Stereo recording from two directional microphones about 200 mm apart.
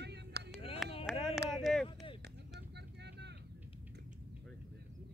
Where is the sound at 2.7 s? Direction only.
55° right (ahead or behind).